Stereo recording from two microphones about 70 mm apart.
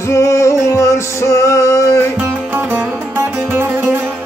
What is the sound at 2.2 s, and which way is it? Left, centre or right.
Music, right.